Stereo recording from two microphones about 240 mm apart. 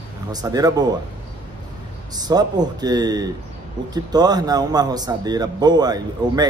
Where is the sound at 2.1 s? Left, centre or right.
Centre.